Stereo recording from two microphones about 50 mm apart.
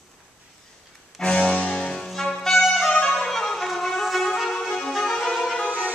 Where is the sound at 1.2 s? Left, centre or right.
Centre.